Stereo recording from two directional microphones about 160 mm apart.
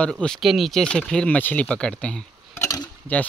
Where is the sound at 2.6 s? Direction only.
20° left (ahead or behind).